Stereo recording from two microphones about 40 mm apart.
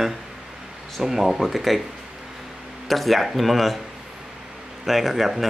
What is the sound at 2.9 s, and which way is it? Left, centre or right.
Speech, centre.